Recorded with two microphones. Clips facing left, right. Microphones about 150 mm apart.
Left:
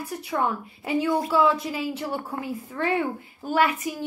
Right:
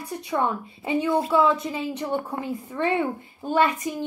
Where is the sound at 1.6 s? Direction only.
5° left (ahead or behind).